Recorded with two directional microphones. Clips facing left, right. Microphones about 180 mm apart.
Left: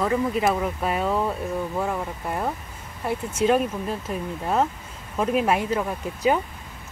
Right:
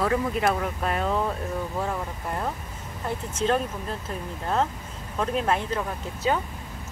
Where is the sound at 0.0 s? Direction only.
Centre (ahead or behind).